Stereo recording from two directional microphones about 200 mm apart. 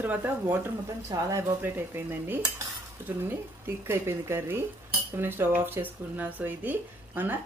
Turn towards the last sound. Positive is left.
turn(degrees=-10)  # may be behind; listen again after turning